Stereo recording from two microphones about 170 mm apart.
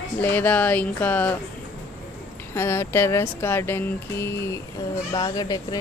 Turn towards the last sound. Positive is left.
turn(degrees=20)  # may be behind; listen again after turning